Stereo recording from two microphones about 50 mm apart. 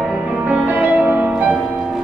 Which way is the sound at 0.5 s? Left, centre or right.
Right.